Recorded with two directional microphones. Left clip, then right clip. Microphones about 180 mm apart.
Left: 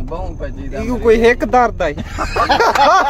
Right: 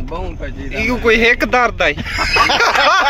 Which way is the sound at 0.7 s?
25° left (ahead or behind).